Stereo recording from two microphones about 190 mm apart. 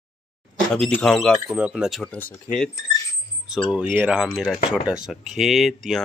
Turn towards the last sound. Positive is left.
turn(degrees=0)  # may be behind; listen again after turning